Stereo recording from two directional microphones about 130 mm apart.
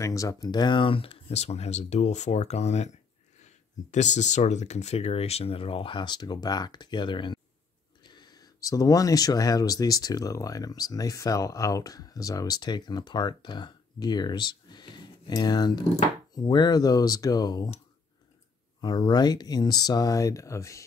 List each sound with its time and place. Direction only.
0.0 s speech: 25° left (ahead or behind)
18.8 s speech: 35° left (ahead or behind)